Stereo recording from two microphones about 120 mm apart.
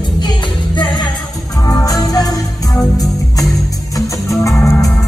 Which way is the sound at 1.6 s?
25° left (ahead or behind).